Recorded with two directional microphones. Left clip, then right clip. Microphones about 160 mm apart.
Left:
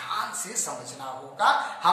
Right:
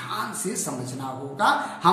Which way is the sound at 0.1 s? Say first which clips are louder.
Right 1 dB; centre (ahead or behind).